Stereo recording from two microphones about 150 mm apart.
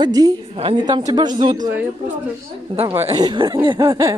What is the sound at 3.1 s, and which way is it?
A woman's voice, 25° right (ahead or behind).